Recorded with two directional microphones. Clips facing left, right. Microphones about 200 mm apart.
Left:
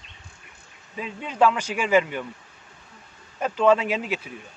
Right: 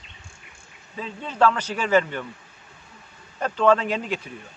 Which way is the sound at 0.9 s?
10° left (ahead or behind).